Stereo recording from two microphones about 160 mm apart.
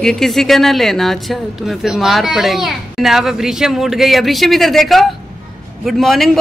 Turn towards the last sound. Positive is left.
turn(degrees=0)  # may be behind; listen again after turning